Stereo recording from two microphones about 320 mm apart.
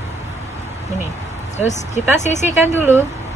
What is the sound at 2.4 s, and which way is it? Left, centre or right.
Speech, centre.